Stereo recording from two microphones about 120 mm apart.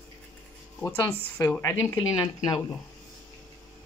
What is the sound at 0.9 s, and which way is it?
A woman's voice, 20° left (ahead or behind).